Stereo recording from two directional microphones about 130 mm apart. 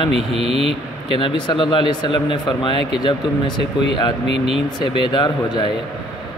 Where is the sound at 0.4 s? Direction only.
50° right (ahead or behind).